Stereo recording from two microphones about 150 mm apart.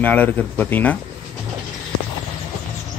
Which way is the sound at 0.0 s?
10° left (ahead or behind).